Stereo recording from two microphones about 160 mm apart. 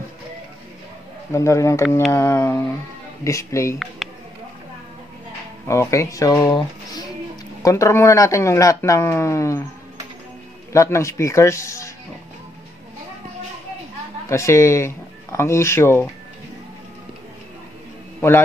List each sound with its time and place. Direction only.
1.3 s speech: 20° left (ahead or behind)
4.0 s a sound: centre (ahead or behind)
5.7 s speech: 20° left (ahead or behind)
10.7 s speech: 20° left (ahead or behind)
14.3 s speech: 20° left (ahead or behind)